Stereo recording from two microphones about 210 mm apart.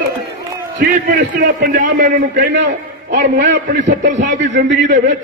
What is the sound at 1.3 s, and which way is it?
Speech, 40° right (ahead or behind).